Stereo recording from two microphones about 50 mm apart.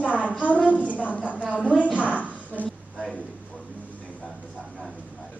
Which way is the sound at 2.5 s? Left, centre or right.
Left.